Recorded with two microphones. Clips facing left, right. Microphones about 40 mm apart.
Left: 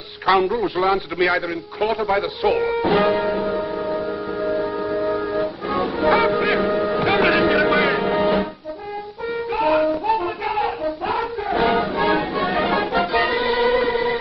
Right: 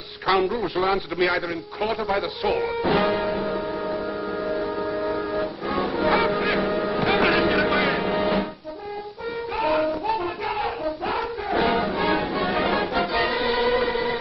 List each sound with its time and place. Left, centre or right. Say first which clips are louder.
0.3 s a man's voice: left 4 dB; centre
2.9 s music: left 3 dB; centre
9.6 s child singing: left 4 dB; centre